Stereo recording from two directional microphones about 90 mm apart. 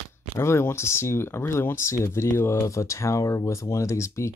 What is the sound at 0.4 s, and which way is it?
Speech, 30° left (ahead or behind).